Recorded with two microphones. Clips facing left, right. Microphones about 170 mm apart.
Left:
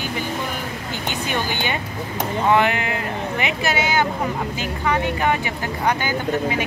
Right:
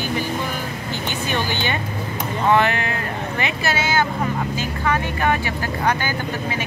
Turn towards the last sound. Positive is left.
turn(degrees=15)  # may be behind; listen again after turning